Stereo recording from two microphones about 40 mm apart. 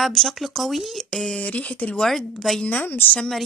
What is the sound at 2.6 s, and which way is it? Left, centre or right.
Speech, left.